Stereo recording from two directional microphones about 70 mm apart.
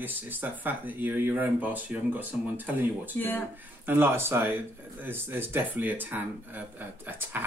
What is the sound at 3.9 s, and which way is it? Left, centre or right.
Speech, right.